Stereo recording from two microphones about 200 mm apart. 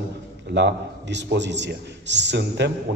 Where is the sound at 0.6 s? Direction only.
60° right (ahead or behind).